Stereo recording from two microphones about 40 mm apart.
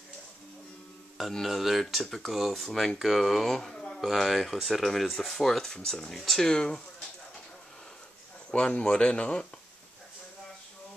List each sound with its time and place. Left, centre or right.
1.4 s speech: centre
4.0 s speech: centre
5.6 s speech: centre
8.5 s speech: left